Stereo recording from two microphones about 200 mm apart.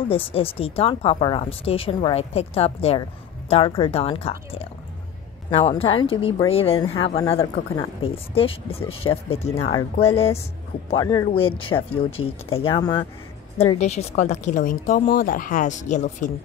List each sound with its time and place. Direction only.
0.1 s a woman's voice: 30° left (ahead or behind)
10.9 s speech: 20° left (ahead or behind)
13.7 s a woman's voice: 35° left (ahead or behind)